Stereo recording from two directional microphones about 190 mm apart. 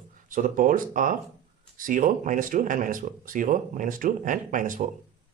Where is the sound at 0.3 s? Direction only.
45° right (ahead or behind).